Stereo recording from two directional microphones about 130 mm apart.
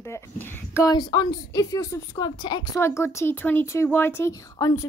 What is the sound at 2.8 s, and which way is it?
A woman's voice, 20° left (ahead or behind).